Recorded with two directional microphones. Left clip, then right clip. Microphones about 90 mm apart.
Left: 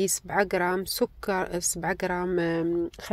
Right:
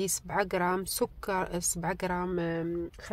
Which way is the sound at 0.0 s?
30° left (ahead or behind).